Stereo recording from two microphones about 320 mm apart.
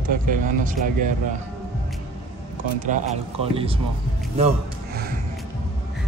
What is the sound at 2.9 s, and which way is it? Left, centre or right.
Speech, right.